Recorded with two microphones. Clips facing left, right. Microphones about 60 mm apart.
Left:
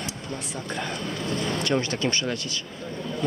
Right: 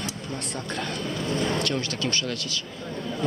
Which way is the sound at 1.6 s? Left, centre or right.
Centre.